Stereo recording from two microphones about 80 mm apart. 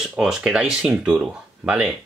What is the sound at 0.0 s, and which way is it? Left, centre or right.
Speech, centre.